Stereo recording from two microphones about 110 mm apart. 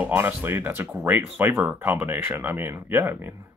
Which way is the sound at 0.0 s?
15° right (ahead or behind).